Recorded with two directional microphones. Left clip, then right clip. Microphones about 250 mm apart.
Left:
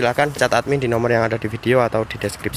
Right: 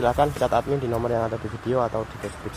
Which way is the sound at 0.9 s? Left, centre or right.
Left.